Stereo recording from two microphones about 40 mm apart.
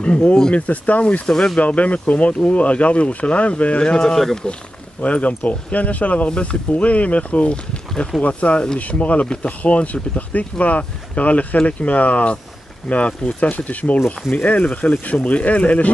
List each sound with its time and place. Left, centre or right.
0.6 s speech: left
1.2 s speech: centre
1.6 s speech: left
3.9 s speech: centre
5.0 s speech: left